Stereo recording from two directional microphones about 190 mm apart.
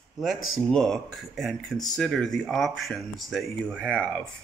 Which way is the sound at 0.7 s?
5° left (ahead or behind).